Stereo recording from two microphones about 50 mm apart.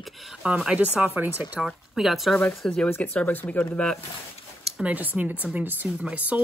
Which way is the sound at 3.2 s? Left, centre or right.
Left.